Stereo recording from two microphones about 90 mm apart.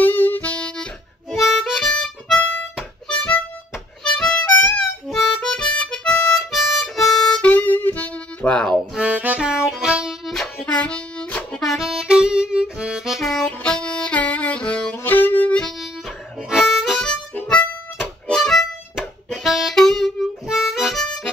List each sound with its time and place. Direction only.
0.0 s saxophone: 20° left (ahead or behind)
1.3 s harmonica: centre (ahead or behind)
4.2 s music: 15° left (ahead or behind)
5.0 s harmonica: 5° left (ahead or behind)
7.3 s music: 15° left (ahead or behind)
8.9 s music: 15° right (ahead or behind); by 11.4 s 15° left (ahead or behind)
11.5 s music: centre (ahead or behind); by 15.6 s 20° left (ahead or behind)
16.4 s harmonica: 5° right (ahead or behind)
17.4 s harmonica: 15° left (ahead or behind)